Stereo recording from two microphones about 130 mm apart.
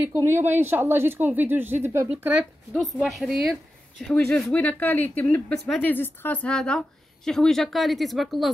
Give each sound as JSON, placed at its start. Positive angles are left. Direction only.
{"t": 0.0, "sound": "speech", "side_deg": -20}
{"t": 2.7, "sound": "speech", "side_deg": 0}